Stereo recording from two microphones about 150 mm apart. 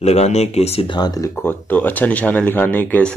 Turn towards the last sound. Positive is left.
turn(degrees=10)  # may be behind; listen again after turning